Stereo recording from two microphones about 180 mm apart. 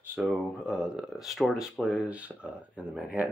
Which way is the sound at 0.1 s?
5° right (ahead or behind).